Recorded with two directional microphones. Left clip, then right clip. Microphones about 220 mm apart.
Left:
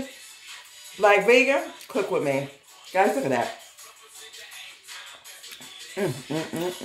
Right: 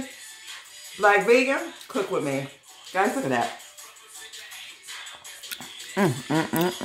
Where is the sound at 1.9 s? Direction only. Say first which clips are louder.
Left 2 dB; 10° right (ahead or behind).